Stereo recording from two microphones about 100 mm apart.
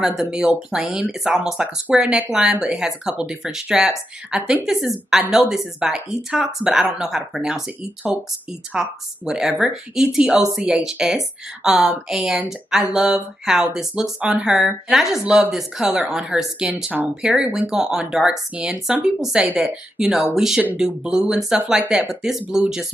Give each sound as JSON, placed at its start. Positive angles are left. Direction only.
{"t": 0.2, "sound": "a woman's voice", "side_deg": -5}